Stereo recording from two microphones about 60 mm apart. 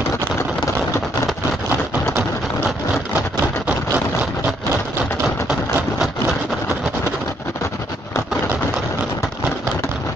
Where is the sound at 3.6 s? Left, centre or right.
Right.